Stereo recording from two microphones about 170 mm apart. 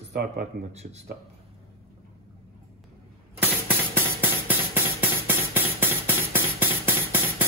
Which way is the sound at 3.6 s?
10° right (ahead or behind).